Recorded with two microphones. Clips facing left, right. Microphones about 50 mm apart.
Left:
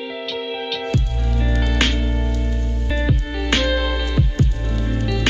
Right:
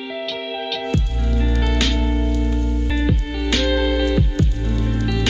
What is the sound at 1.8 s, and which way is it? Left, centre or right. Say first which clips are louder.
Music: even; left.